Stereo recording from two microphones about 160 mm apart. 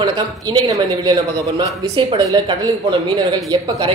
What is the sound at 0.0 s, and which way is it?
Speech, 30° right (ahead or behind).